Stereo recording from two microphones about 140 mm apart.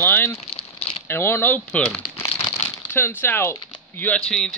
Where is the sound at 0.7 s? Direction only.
45° left (ahead or behind).